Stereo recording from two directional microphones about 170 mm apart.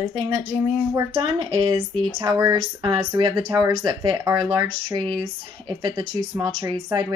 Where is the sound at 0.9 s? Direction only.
30° right (ahead or behind).